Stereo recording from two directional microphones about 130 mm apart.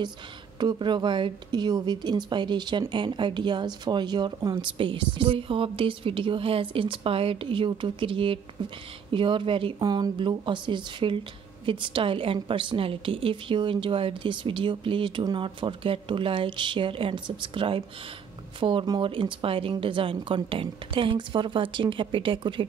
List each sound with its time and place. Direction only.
0.6 s speech: 35° right (ahead or behind)